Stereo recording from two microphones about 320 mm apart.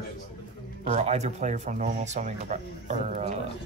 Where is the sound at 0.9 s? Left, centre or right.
Right.